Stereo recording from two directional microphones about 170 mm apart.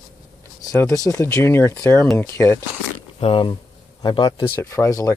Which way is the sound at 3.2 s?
30° left (ahead or behind).